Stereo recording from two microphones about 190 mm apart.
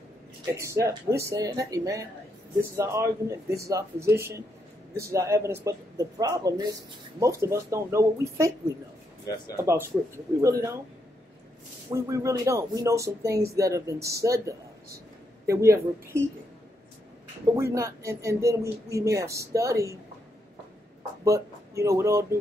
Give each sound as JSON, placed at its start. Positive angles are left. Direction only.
{"t": 0.6, "sound": "speech", "side_deg": -15}
{"t": 9.6, "sound": "speech", "side_deg": -15}
{"t": 11.9, "sound": "speech", "side_deg": -15}
{"t": 17.6, "sound": "speech", "side_deg": -15}
{"t": 21.2, "sound": "speech", "side_deg": -15}